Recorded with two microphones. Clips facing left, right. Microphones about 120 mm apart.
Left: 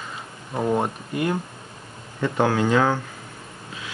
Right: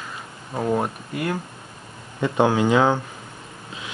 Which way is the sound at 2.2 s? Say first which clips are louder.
Right 2 dB; 20° right (ahead or behind).